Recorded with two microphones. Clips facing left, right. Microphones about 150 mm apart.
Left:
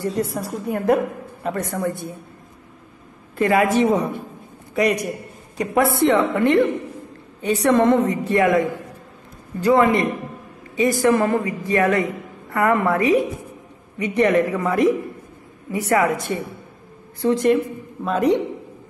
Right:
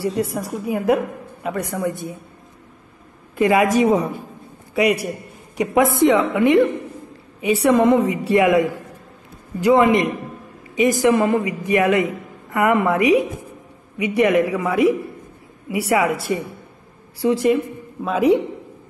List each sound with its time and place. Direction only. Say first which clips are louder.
0.0 s a woman's voice: right 1 dB; 10° right (ahead or behind)
3.3 s a man's voice: right 1 dB; 15° right (ahead or behind)